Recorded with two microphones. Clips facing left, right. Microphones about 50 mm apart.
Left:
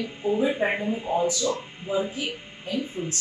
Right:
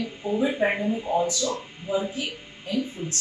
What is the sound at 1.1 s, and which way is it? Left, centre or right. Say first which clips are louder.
Speech: left 2 dB; left.